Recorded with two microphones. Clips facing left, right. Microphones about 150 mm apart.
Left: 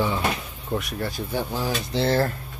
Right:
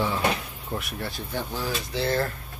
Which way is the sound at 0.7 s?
Centre (ahead or behind).